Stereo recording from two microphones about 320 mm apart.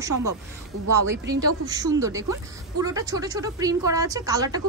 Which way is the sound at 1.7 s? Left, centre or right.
Centre.